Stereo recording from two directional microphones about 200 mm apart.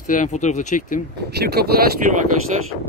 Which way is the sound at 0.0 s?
40° left (ahead or behind).